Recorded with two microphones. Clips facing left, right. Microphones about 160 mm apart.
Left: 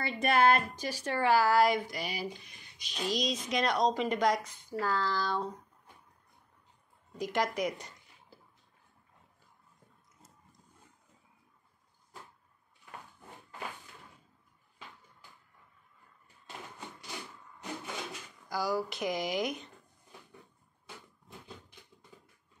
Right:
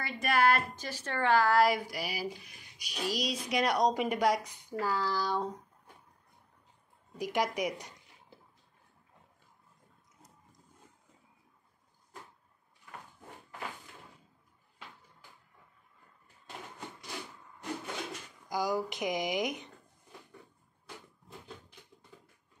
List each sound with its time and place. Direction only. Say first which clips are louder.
0.0 s a woman's voice: left 2 dB; 25° left (ahead or behind); by 5.6 s 15° right (ahead or behind)
7.2 s a woman's voice: even; 10° right (ahead or behind)
18.5 s a woman's voice: right 1 dB; 15° right (ahead or behind)